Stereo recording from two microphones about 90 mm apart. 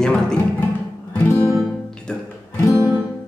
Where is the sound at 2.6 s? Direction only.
35° left (ahead or behind).